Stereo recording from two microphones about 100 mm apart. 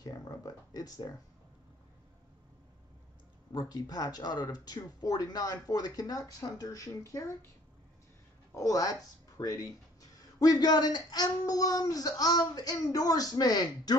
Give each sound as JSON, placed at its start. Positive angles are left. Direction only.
{"t": 0.0, "sound": "a sound", "side_deg": 35}
{"t": 3.5, "sound": "speech", "side_deg": 40}
{"t": 8.5, "sound": "speech", "side_deg": 35}